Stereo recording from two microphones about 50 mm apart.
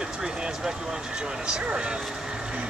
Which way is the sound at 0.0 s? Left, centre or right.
Centre.